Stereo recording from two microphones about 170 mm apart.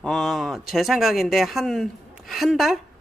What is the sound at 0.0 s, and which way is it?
Speech, centre (ahead or behind).